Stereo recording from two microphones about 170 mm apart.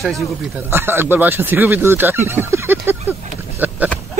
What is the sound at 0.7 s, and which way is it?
Speech, 15° right (ahead or behind).